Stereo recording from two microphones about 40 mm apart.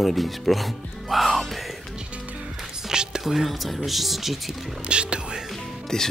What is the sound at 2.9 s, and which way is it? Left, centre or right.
Whispering, centre.